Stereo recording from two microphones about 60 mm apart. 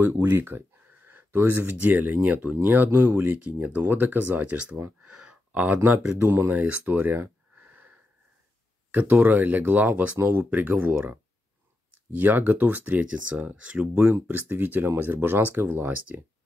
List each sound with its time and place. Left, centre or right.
0.0 s speech: right
5.1 s a sound: centre
6.2 s speech: right
8.9 s speech: right
13.9 s speech: right